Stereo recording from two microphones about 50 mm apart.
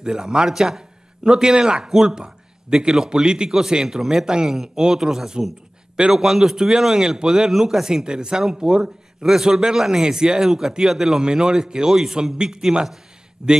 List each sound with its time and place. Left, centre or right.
0.0 s a man's voice: centre